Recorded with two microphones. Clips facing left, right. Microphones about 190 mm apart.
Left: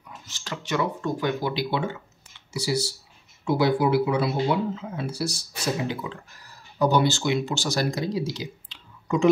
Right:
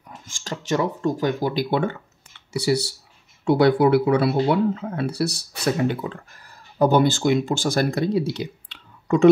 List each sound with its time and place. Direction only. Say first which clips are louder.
0.3 s speech: right 4 dB; 40° right (ahead or behind); by 5.9 s 65° right (ahead or behind)
6.8 s speech: right 4 dB; 50° right (ahead or behind)